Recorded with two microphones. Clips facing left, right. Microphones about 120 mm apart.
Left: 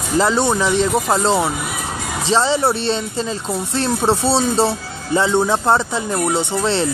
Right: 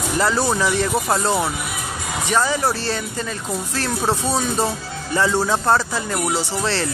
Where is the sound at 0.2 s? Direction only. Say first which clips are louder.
Left 3 dB; 25° left (ahead or behind).